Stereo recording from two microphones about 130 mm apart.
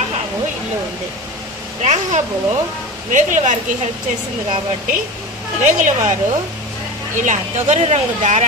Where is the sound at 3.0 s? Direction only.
75° right (ahead or behind).